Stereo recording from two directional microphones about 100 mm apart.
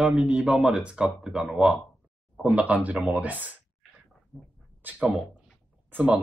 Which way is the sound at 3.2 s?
15° right (ahead or behind).